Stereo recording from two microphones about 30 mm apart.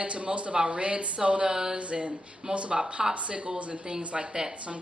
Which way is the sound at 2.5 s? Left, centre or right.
Right.